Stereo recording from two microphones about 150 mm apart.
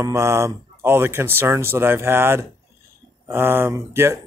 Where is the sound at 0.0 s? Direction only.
20° right (ahead or behind).